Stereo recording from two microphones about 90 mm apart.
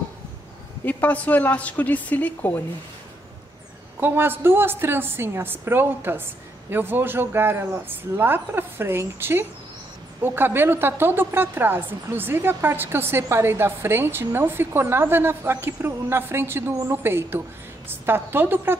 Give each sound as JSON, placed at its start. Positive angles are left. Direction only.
{"t": 0.8, "sound": "a woman's voice", "side_deg": 20}
{"t": 4.0, "sound": "a woman's voice", "side_deg": -25}